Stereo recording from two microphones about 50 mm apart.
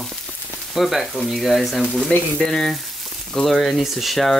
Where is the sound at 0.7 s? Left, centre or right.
Centre.